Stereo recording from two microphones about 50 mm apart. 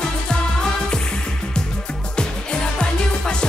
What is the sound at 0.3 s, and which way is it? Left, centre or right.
Music, centre.